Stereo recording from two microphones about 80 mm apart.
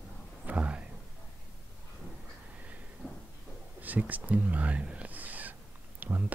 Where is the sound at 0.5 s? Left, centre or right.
Centre.